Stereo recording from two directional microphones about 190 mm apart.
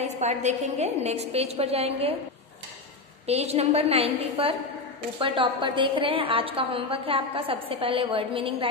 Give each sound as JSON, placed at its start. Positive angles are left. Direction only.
{"t": 0.0, "sound": "a woman's voice", "side_deg": -35}
{"t": 3.3, "sound": "a woman's voice", "side_deg": -35}